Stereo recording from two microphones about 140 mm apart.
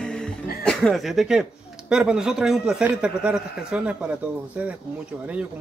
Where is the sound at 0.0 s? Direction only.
5° left (ahead or behind).